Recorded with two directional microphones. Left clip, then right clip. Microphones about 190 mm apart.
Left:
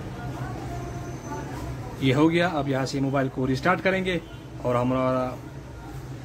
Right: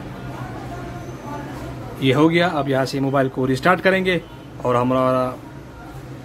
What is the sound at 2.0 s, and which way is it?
Speech, 10° right (ahead or behind).